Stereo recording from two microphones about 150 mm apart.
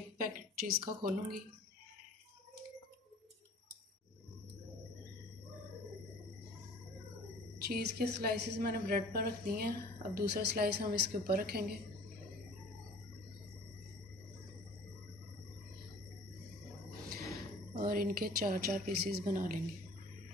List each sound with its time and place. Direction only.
0.2 s a woman's voice: 70° right (ahead or behind)
7.6 s a woman's voice: 90° right
17.7 s a woman's voice: 70° right (ahead or behind)